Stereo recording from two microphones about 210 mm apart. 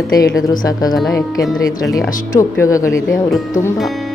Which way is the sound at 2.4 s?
15° left (ahead or behind).